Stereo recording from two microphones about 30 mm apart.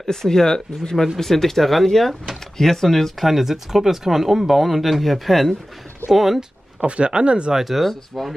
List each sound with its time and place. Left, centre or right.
0.0 s speech: centre
3.3 s speech: centre
6.8 s speech: right
7.5 s speech: centre
7.8 s speech: centre